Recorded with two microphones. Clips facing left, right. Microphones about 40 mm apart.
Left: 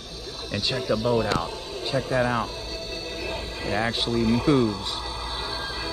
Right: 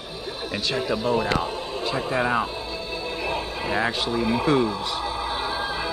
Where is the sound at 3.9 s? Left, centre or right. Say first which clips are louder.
Even; centre.